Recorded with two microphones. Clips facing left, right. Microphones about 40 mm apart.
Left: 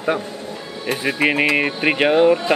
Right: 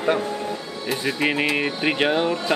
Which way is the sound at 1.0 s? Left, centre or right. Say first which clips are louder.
Left 5 dB; left.